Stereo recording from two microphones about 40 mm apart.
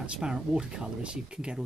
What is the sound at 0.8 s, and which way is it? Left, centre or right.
Speech, right.